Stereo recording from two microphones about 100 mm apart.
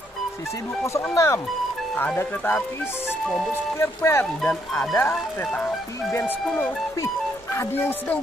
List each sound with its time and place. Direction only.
1.1 s speech: 30° left (ahead or behind)
2.0 s speech: 20° left (ahead or behind)
3.3 s speech: centre (ahead or behind)
3.7 s speech: 25° left (ahead or behind)